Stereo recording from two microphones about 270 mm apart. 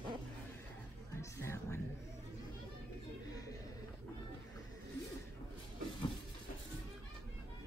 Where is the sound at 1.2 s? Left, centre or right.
Centre.